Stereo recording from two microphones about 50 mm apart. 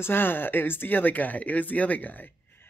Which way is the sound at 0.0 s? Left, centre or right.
Left.